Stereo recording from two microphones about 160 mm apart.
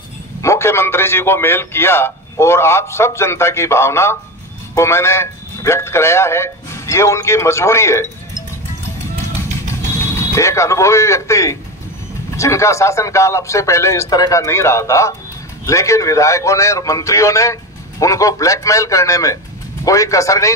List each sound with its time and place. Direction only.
0.4 s a man's voice: 15° left (ahead or behind)
10.3 s a man's voice: 20° left (ahead or behind)